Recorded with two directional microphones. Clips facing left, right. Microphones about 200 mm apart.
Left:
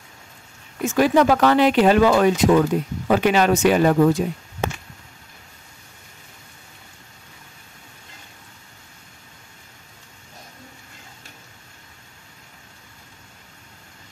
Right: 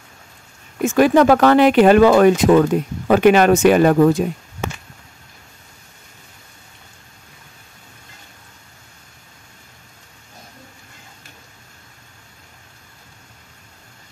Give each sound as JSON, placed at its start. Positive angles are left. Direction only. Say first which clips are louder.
{"t": 0.8, "sound": "speech", "louder": "right 4 dB", "side_deg": -55}